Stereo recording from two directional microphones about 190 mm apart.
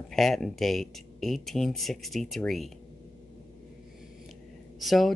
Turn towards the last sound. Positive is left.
turn(degrees=0)  # may be behind; listen again after turning